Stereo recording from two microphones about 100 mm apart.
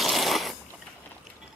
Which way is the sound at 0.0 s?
Centre (ahead or behind).